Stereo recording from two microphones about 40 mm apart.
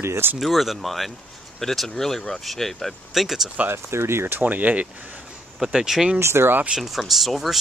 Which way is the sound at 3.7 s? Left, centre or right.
Right.